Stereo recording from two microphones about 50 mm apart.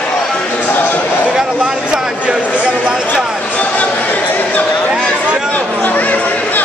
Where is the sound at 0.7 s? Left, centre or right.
Left.